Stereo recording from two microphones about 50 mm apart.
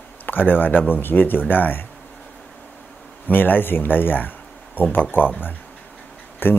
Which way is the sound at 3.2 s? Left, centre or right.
Left.